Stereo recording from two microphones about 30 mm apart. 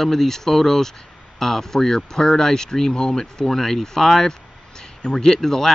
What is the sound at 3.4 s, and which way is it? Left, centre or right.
Speech, centre.